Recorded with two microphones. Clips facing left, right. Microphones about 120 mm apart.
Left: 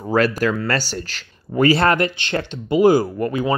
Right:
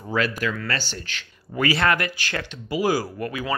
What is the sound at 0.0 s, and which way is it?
Speech, 40° left (ahead or behind).